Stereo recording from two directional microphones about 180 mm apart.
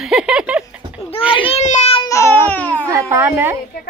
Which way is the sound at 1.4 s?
35° left (ahead or behind).